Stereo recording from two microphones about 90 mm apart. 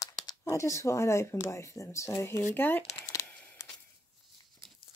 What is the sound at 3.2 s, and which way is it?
Tearing, 15° left (ahead or behind).